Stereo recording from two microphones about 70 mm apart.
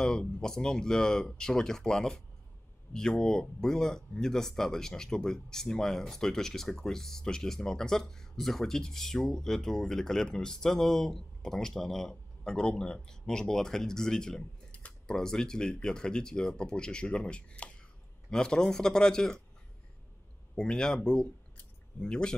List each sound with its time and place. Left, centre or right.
0.0 s speech: centre
20.5 s speech: centre